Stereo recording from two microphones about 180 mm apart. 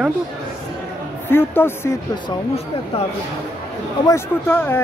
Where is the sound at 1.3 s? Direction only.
10° left (ahead or behind).